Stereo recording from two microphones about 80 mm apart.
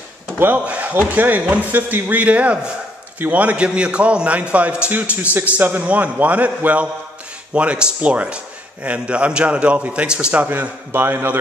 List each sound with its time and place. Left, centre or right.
0.4 s a man's voice: right